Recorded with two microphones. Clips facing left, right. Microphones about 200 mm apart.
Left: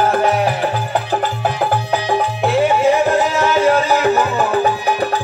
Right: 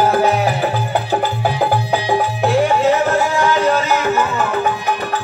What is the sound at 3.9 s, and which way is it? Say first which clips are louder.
Music: left 2 dB; 35° left (ahead or behind).